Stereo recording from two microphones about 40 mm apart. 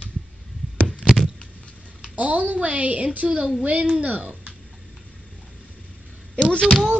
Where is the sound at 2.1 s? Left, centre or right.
Right.